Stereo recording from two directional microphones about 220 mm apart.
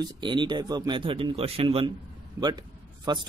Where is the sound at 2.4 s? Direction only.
20° right (ahead or behind).